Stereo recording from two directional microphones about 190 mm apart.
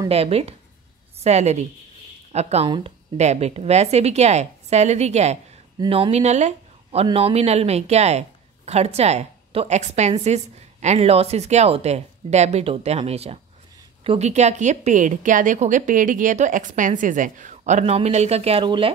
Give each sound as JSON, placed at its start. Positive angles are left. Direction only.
{"t": 0.1, "sound": "speech", "side_deg": -30}